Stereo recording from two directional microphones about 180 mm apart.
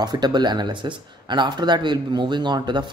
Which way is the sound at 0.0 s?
25° right (ahead or behind).